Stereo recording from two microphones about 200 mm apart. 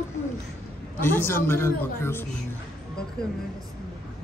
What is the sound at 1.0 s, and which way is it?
Speech, 10° left (ahead or behind).